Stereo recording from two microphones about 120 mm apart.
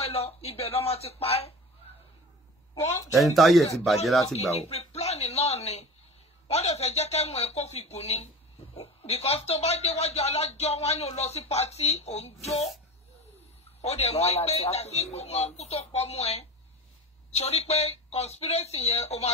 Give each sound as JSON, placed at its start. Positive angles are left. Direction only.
{"t": 0.0, "sound": "speech", "side_deg": 55}
{"t": 3.3, "sound": "speech", "side_deg": 0}
{"t": 4.6, "sound": "speech", "side_deg": 60}
{"t": 13.7, "sound": "speech", "side_deg": 65}